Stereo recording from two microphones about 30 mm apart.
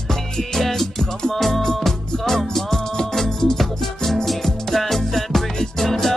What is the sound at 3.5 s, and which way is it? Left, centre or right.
Music, centre.